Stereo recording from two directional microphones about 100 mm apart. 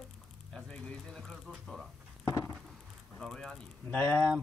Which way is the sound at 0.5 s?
5° left (ahead or behind).